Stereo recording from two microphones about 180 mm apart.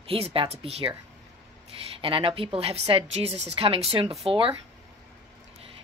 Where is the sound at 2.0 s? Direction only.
30° right (ahead or behind).